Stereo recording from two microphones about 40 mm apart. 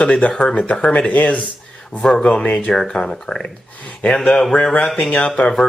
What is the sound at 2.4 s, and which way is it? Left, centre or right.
Speech, left.